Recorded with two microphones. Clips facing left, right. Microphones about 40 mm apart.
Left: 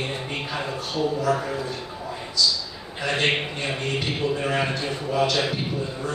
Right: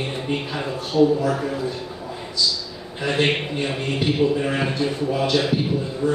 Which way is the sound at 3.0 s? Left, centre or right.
Centre.